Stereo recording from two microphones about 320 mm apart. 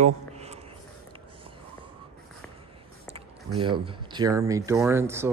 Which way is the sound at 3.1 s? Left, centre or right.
Centre.